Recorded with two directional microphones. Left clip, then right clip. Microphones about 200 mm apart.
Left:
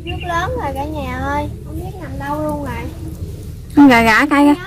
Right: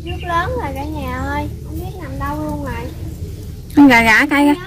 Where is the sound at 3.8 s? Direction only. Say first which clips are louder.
Even; 5° left (ahead or behind).